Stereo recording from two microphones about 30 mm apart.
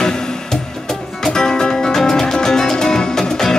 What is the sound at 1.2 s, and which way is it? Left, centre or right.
Music, left.